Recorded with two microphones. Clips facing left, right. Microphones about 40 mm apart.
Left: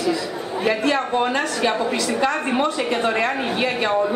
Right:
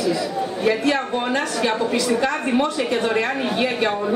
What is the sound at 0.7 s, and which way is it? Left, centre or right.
Speech, centre.